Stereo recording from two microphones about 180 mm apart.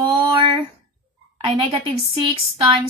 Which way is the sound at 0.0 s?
30° right (ahead or behind).